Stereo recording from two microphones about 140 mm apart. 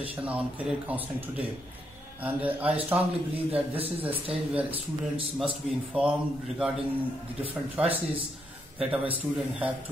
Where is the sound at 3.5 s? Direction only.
45° right (ahead or behind).